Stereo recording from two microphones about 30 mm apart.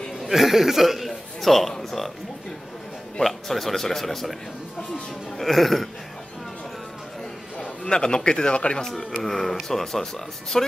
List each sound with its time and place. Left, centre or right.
0.2 s a man's voice: centre
3.2 s speech: centre
5.4 s speech: centre
7.8 s speech: left
9.2 s speech: centre